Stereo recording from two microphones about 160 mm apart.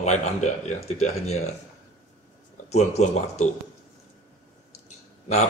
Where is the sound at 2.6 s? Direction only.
45° left (ahead or behind).